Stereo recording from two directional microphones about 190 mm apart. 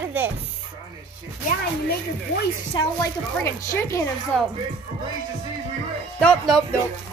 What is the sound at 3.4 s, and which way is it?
Speech, 15° left (ahead or behind).